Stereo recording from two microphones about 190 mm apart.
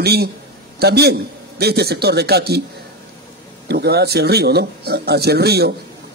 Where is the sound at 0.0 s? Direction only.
55° right (ahead or behind).